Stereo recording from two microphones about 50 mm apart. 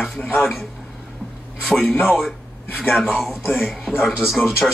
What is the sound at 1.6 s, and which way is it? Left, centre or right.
Speech, centre.